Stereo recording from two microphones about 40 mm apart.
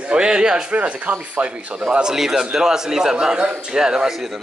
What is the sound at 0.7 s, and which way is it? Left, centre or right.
Speech, right.